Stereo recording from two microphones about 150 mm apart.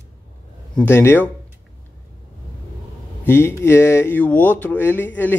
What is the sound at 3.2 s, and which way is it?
A man's voice, 15° left (ahead or behind).